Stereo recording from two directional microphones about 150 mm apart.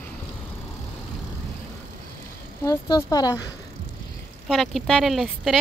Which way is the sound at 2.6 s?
25° left (ahead or behind).